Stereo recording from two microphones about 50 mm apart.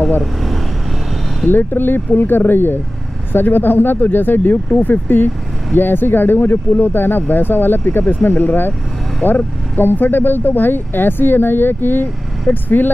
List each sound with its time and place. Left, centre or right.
1.5 s speech: left